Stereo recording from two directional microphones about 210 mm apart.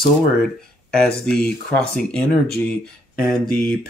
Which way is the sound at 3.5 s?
45° left (ahead or behind).